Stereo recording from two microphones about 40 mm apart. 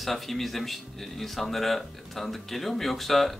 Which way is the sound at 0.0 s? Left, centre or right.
Centre.